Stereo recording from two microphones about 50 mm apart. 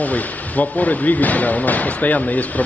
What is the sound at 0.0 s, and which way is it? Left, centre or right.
Speech, left.